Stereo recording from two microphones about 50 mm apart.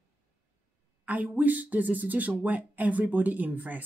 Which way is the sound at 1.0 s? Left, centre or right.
Right.